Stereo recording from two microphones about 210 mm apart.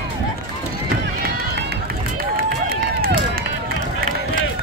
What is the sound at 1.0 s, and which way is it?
Run, 50° right (ahead or behind).